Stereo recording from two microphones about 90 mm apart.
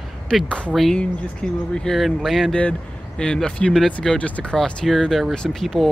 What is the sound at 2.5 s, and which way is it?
Speech, 10° left (ahead or behind).